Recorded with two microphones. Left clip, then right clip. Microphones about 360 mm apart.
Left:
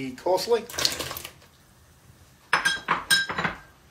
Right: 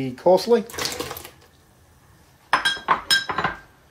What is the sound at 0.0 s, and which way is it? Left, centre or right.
Speech, right.